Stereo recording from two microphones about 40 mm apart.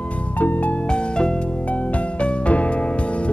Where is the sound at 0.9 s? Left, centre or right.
Left.